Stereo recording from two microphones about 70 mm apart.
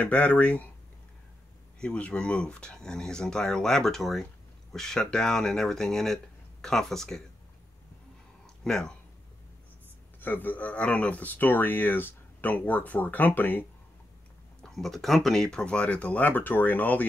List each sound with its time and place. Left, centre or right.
0.0 s speech: centre
1.8 s speech: centre
8.6 s speech: centre
10.2 s speech: left
14.6 s speech: centre; by 17.0 s left